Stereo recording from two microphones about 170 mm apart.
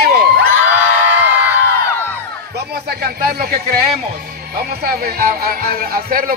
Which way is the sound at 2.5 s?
70° right (ahead or behind).